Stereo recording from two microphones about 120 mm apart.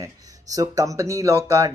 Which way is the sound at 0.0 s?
30° right (ahead or behind).